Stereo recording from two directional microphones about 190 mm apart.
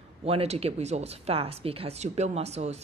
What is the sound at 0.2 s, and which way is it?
Speech, 30° right (ahead or behind).